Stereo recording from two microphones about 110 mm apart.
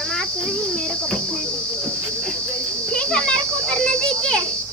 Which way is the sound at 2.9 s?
10° left (ahead or behind).